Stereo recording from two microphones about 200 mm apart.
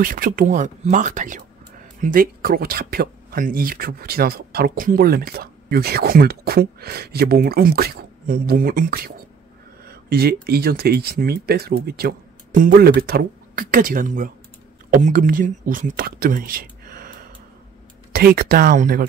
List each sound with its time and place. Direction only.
0.0 s speech: 45° right (ahead or behind)